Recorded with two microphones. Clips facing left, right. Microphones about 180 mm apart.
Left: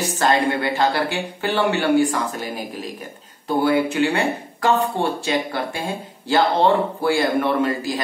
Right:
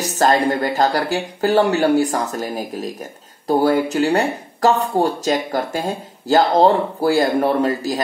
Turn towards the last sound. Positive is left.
turn(degrees=-40)  # may be behind; listen again after turning